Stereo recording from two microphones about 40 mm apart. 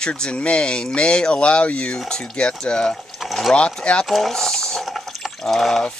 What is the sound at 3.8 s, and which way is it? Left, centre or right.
Speech, left.